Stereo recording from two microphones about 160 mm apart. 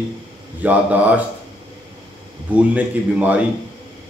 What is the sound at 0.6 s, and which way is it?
Speech, 10° right (ahead or behind).